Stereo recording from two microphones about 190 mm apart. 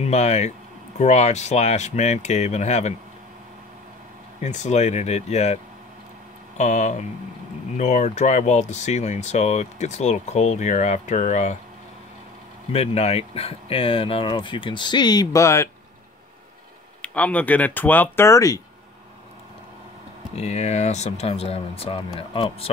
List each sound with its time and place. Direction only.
0.0 s speech: 35° left (ahead or behind)
4.4 s speech: 35° left (ahead or behind)
6.6 s speech: 40° left (ahead or behind)
12.7 s speech: 35° left (ahead or behind); by 15.7 s 15° left (ahead or behind)
17.0 s speech: 5° left (ahead or behind)
20.3 s speech: 35° left (ahead or behind)